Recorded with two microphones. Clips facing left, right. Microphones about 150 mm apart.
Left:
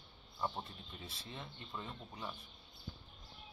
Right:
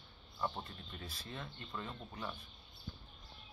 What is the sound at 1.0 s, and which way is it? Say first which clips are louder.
Speech: right 2 dB; 25° left (ahead or behind).